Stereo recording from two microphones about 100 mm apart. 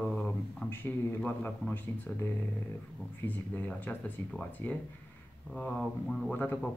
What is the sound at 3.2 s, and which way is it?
Speech, 15° left (ahead or behind).